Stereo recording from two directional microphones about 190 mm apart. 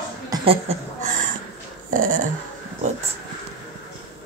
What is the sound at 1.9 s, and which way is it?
Dog, 45° right (ahead or behind).